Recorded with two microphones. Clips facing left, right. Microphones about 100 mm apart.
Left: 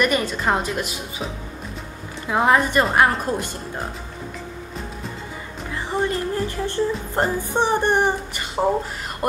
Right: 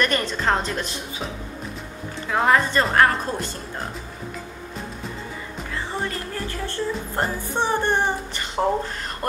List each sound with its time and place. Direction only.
0.0 s speech: 10° left (ahead or behind)
2.2 s speech: 15° left (ahead or behind)
5.7 s speech: 20° left (ahead or behind)